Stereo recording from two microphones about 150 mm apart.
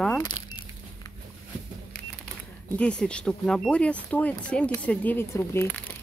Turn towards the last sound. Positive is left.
turn(degrees=15)  # may be behind; listen again after turning